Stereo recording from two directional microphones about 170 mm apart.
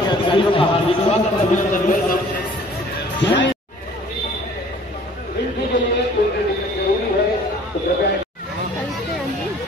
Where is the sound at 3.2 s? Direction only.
90° left.